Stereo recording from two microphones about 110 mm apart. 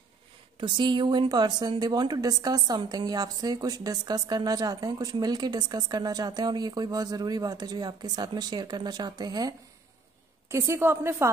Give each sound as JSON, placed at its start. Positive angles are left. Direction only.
{"t": 0.6, "sound": "a woman's voice", "side_deg": -45}
{"t": 10.5, "sound": "a woman's voice", "side_deg": -25}